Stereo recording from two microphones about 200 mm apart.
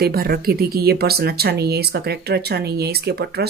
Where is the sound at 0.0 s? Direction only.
50° right (ahead or behind).